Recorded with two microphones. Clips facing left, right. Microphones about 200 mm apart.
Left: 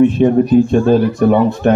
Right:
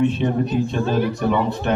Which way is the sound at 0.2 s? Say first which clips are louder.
Left 10 dB; 50° left (ahead or behind).